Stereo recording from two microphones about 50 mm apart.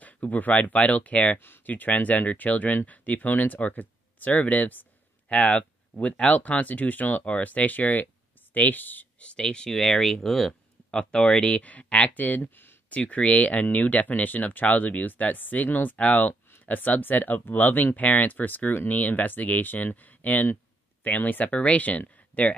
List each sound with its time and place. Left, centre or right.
0.0 s speech: left
9.2 s speech: centre
10.9 s speech: centre
11.6 s speech: left
21.5 s speech: left